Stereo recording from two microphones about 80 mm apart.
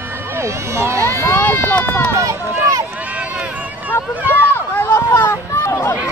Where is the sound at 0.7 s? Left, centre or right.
Right.